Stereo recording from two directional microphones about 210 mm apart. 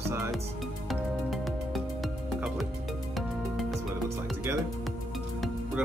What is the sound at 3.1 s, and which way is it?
Music, centre (ahead or behind).